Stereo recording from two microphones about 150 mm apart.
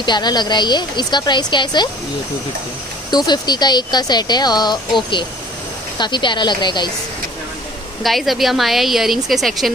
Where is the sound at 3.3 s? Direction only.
30° left (ahead or behind).